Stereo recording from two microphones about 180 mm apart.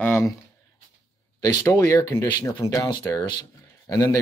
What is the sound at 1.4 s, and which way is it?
Speech, 20° left (ahead or behind).